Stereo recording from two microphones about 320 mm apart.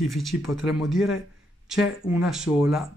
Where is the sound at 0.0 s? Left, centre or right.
Centre.